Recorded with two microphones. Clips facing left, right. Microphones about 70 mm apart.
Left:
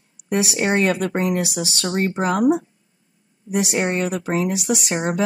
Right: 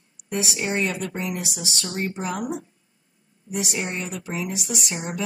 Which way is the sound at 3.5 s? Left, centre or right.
Left.